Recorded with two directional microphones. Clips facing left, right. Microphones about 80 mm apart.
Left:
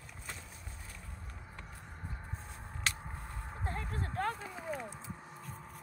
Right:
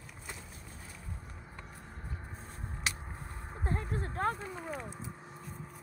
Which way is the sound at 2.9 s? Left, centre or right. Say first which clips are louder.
Left 1 dB; centre.